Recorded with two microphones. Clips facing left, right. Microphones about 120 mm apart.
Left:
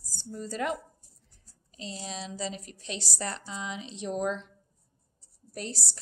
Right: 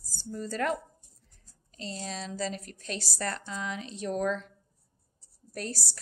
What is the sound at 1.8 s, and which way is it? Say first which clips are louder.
A woman's voice: right 1 dB; 15° left (ahead or behind).